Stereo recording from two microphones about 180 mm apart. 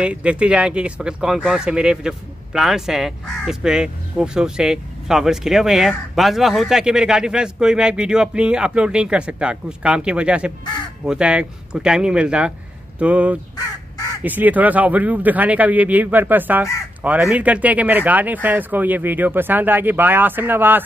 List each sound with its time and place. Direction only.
0.0 s speech: 5° right (ahead or behind)
13.6 s crow: 20° left (ahead or behind)
14.2 s speech: 10° right (ahead or behind)